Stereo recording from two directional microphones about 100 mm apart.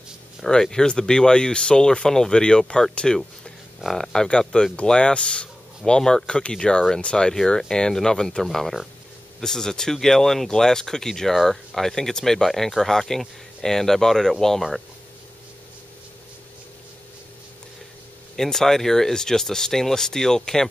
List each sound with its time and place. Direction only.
0.4 s speech: 5° left (ahead or behind)
18.3 s speech: 5° left (ahead or behind)